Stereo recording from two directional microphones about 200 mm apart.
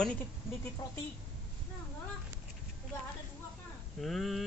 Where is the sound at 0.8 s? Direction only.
15° left (ahead or behind).